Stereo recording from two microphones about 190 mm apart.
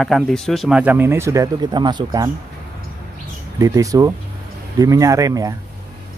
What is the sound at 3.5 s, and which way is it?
Speech, 15° right (ahead or behind).